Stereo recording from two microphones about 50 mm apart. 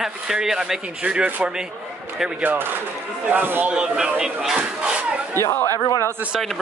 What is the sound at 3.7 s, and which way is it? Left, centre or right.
Speech, centre.